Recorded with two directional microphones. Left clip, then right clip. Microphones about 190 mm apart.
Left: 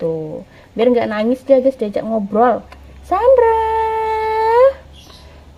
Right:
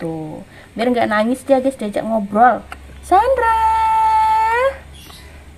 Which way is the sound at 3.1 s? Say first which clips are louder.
Left 2 dB; 30° left (ahead or behind).